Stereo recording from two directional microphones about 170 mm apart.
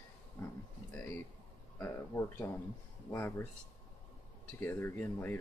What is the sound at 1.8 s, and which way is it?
Speech, 15° left (ahead or behind).